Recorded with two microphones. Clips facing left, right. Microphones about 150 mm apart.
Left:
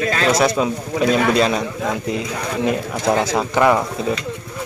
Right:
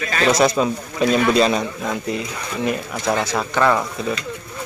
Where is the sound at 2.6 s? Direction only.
20° left (ahead or behind).